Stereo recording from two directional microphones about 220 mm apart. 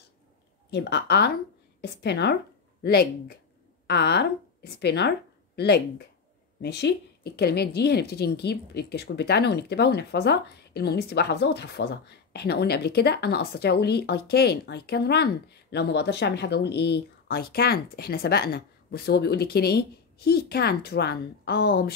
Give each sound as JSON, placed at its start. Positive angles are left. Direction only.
{"t": 0.7, "sound": "a woman's voice", "side_deg": 50}